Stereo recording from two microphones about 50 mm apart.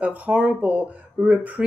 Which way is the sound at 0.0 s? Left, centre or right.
Right.